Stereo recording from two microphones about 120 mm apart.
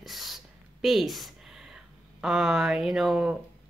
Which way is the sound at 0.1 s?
Centre (ahead or behind).